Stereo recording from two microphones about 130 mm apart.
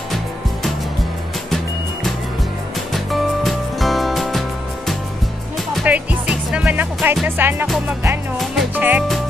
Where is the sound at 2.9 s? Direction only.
Centre (ahead or behind).